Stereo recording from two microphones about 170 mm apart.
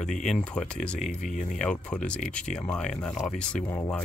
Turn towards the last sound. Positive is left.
turn(degrees=10)  # may be behind; listen again after turning